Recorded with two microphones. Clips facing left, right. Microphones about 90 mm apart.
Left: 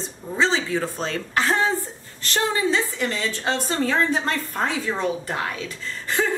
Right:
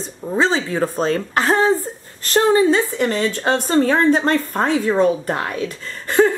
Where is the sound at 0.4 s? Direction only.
40° right (ahead or behind).